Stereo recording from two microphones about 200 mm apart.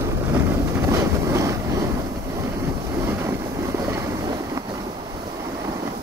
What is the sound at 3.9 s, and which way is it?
Vehicle, 15° right (ahead or behind).